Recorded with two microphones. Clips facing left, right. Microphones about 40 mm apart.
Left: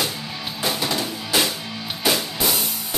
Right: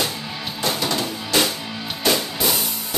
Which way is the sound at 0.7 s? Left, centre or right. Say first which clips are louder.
Right 1 dB; centre.